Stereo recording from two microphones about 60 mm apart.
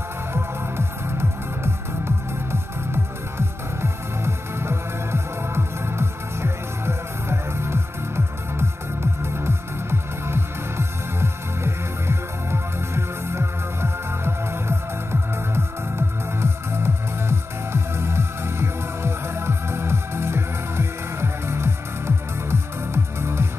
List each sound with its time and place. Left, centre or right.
0.3 s music: right